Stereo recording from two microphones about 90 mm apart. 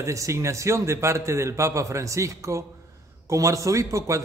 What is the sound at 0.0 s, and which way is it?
A man's voice, 35° right (ahead or behind).